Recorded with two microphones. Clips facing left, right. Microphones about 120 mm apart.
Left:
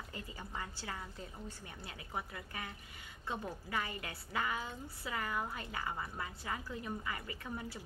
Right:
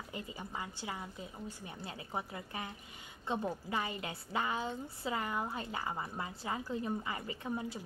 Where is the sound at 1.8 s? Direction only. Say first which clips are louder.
Right 3 dB; 25° right (ahead or behind).